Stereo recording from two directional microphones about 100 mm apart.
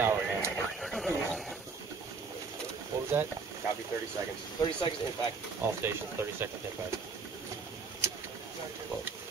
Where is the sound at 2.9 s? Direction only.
30° right (ahead or behind).